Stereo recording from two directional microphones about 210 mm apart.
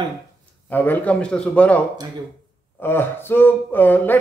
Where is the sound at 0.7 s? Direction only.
10° left (ahead or behind).